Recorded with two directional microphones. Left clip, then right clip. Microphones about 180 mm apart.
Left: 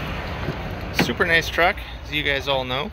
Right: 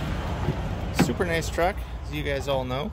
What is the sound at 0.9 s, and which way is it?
Speech, 5° right (ahead or behind).